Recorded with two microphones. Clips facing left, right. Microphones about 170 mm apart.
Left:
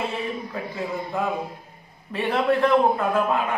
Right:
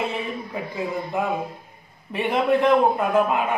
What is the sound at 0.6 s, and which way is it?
A man's voice, 20° right (ahead or behind).